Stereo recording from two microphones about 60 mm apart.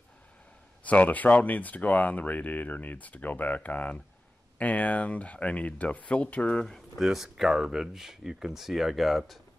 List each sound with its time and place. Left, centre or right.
0.8 s speech: left
6.6 s speech: centre
7.1 s speech: centre